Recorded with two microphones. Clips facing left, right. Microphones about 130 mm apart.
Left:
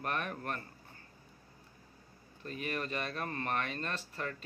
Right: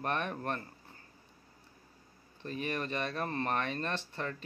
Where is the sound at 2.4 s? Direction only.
30° right (ahead or behind).